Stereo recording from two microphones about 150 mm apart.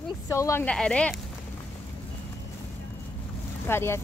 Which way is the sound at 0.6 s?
5° left (ahead or behind).